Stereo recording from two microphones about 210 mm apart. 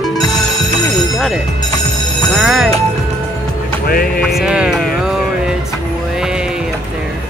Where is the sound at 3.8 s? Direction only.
45° left (ahead or behind).